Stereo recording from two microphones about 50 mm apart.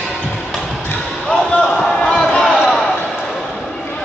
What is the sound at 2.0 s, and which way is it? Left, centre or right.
Basketball bounce, centre.